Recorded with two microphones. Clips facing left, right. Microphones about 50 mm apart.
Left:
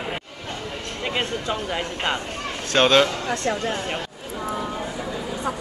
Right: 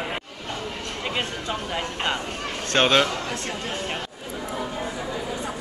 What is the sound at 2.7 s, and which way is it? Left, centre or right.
Speech, centre.